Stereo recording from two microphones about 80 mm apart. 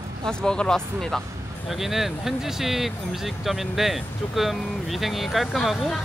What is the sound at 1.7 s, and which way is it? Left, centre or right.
Speech, centre.